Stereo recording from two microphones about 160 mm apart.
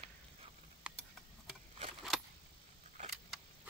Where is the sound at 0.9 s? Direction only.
5° right (ahead or behind).